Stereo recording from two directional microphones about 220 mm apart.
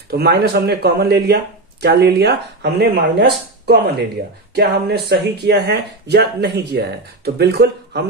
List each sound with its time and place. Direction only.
0.1 s speech: 45° right (ahead or behind)